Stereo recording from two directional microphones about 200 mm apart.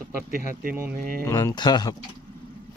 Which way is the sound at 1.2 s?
15° left (ahead or behind).